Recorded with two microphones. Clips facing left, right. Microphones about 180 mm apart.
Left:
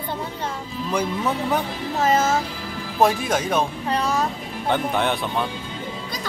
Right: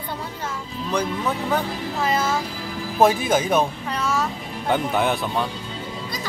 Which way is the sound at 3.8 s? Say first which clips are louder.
Left 2 dB; 35° left (ahead or behind).